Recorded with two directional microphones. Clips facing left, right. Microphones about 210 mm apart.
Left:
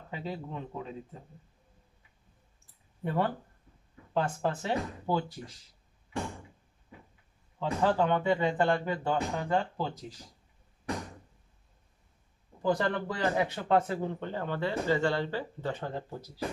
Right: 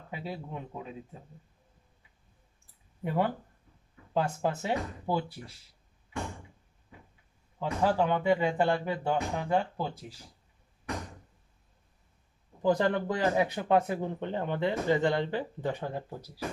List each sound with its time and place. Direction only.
0.1 s speech: 10° right (ahead or behind)
3.0 s speech: 10° right (ahead or behind)
7.5 s speech: 10° right (ahead or behind)
12.6 s speech: 20° right (ahead or behind)